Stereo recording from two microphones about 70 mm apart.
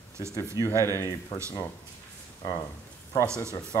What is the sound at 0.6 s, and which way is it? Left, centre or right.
Speech, right.